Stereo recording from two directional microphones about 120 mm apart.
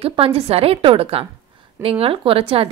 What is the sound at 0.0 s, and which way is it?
A woman's voice, 55° right (ahead or behind).